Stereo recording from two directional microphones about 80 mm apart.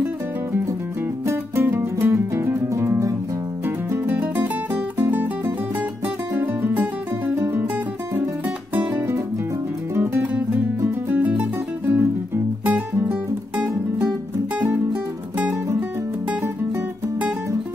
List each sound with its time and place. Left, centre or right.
1.2 s music: right
3.6 s music: right
6.3 s music: right
10.8 s music: right